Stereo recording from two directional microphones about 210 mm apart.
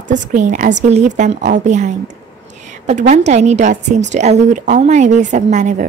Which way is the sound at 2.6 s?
35° right (ahead or behind).